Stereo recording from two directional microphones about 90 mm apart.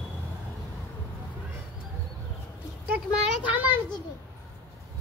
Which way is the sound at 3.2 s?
10° right (ahead or behind).